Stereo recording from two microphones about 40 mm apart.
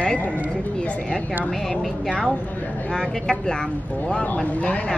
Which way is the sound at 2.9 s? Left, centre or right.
Left.